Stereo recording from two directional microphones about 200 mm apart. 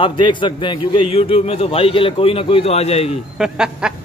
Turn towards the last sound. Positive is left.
turn(degrees=-5)  # may be behind; listen again after turning